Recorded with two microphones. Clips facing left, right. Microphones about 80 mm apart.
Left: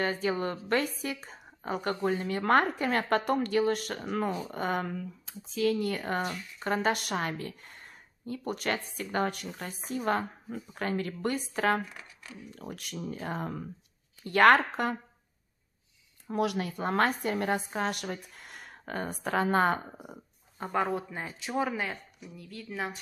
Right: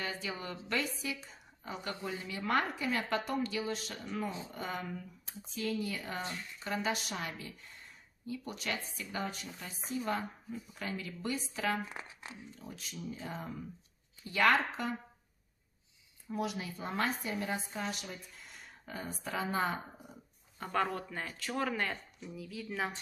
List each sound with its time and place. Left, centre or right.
0.0 s a woman's voice: left
5.6 s a woman's voice: left
16.3 s a woman's voice: left
20.7 s speech: centre